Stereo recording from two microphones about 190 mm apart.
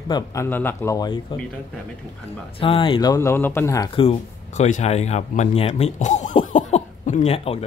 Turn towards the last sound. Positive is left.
turn(degrees=30)  # may be behind; listen again after turning